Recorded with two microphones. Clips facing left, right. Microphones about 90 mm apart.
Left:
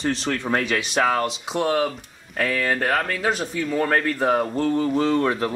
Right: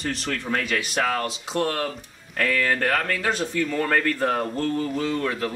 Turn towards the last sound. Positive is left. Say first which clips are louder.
# left 5 dB
turn(degrees=30)  # may be behind; listen again after turning